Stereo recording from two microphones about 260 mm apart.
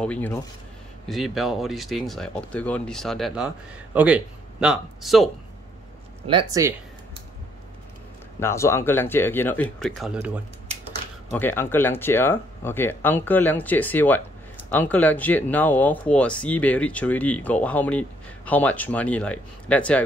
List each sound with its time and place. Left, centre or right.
0.0 s speech: centre
6.2 s speech: centre
8.4 s speech: centre
11.3 s speech: centre